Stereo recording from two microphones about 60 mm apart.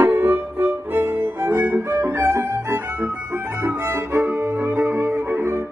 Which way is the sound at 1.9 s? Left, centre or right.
Right.